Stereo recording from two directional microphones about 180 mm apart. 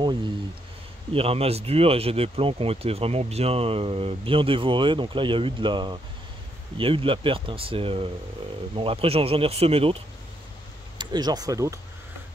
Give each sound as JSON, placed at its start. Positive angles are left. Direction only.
{"t": 1.1, "sound": "speech", "side_deg": -30}
{"t": 11.0, "sound": "speech", "side_deg": -25}